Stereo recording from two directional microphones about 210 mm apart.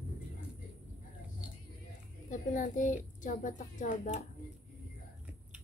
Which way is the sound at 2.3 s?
35° left (ahead or behind).